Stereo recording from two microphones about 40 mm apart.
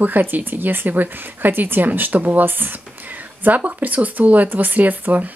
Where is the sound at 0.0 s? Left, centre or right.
Right.